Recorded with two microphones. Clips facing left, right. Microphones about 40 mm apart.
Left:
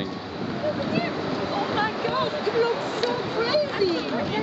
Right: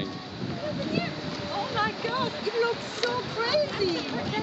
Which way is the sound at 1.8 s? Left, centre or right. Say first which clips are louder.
Left 4 dB; left.